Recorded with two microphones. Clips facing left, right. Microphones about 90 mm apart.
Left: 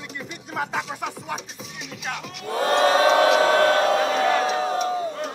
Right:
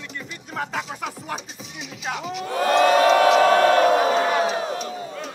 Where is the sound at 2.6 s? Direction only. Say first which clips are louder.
Right 2 dB; 30° left (ahead or behind).